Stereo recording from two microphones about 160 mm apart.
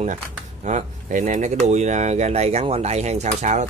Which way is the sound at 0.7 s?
50° right (ahead or behind).